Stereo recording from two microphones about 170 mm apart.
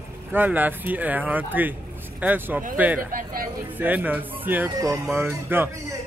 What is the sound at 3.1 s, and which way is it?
Speech, 55° right (ahead or behind).